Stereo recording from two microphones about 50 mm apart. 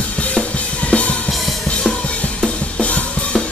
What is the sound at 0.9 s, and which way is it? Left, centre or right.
Music, left.